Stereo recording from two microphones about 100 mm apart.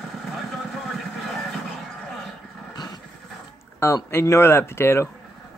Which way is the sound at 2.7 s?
40° left (ahead or behind).